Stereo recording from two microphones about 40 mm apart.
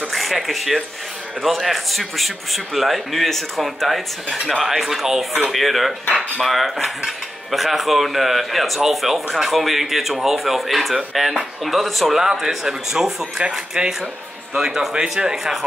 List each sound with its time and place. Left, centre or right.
0.1 s speech: centre
13.4 s speech: right
15.3 s speech: centre